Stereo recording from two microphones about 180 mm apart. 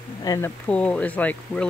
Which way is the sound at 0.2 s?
20° left (ahead or behind).